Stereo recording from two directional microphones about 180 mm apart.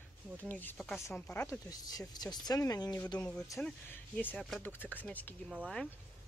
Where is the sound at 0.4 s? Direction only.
10° left (ahead or behind).